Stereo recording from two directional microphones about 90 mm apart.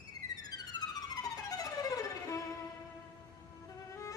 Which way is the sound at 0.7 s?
45° left (ahead or behind).